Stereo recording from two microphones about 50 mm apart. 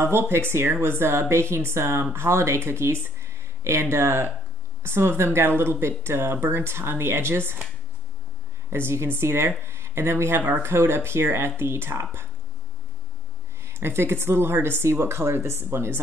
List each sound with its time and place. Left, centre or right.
0.0 s speech: right
8.6 s speech: right
13.7 s speech: right